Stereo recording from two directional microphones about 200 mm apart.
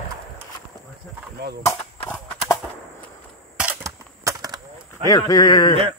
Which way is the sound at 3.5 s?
10° right (ahead or behind).